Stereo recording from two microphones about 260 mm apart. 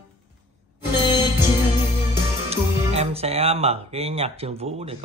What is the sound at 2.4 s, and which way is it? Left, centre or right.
Speech, right.